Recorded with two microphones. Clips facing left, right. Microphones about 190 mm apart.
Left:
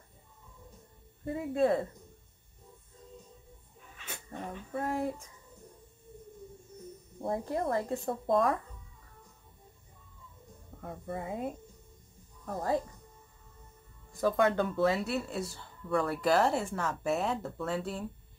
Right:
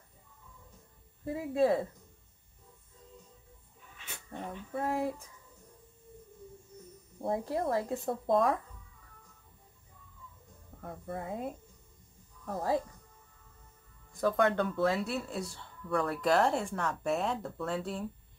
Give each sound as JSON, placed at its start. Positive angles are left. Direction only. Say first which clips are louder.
{"t": 1.2, "sound": "speech", "louder": "even", "side_deg": 0}
{"t": 4.3, "sound": "speech", "louder": "even", "side_deg": 0}
{"t": 7.2, "sound": "speech", "louder": "even", "side_deg": 0}
{"t": 10.8, "sound": "speech", "louder": "left 1 dB", "side_deg": 5}
{"t": 14.2, "sound": "speech", "louder": "left 1 dB", "side_deg": 0}